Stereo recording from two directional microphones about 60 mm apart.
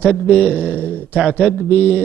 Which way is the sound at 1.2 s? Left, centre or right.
Centre.